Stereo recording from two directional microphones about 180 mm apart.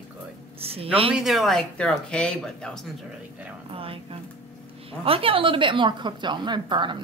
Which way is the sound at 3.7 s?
30° right (ahead or behind).